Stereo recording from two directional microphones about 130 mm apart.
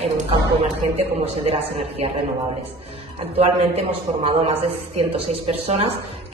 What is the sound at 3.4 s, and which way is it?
Speech, 50° right (ahead or behind).